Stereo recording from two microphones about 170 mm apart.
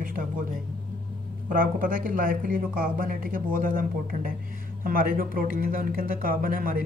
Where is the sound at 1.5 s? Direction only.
55° right (ahead or behind).